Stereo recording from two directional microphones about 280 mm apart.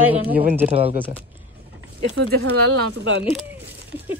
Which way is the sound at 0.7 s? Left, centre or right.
Right.